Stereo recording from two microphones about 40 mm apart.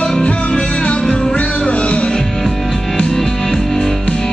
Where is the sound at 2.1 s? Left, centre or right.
Centre.